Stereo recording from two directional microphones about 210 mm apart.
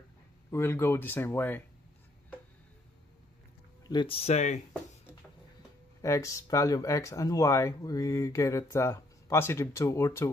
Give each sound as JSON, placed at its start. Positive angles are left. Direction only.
{"t": 0.5, "sound": "speech", "side_deg": 10}
{"t": 3.9, "sound": "speech", "side_deg": 25}
{"t": 6.0, "sound": "speech", "side_deg": 15}